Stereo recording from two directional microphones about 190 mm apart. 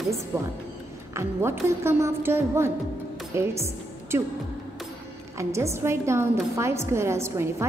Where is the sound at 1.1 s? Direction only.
15° right (ahead or behind).